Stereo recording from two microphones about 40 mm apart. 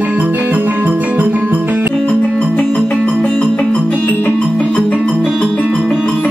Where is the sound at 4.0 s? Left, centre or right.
Left.